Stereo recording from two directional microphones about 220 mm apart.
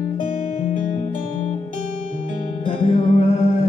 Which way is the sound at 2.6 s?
25° left (ahead or behind).